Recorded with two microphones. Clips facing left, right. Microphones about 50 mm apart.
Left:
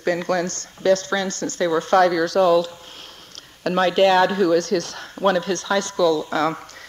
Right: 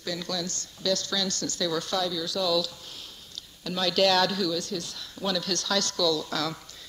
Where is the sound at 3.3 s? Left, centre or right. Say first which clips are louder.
Left 12 dB; left.